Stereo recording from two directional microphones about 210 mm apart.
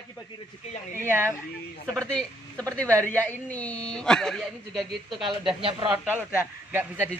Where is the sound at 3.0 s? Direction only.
10° left (ahead or behind).